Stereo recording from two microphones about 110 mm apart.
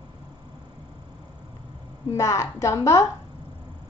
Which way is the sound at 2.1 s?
30° left (ahead or behind).